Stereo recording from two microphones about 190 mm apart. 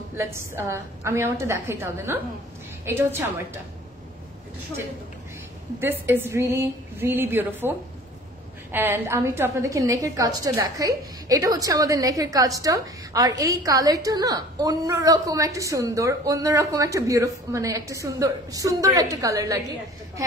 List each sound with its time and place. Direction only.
0.1 s a woman's voice: 15° right (ahead or behind)
5.8 s a woman's voice: 10° right (ahead or behind)
8.7 s a woman's voice: 10° right (ahead or behind)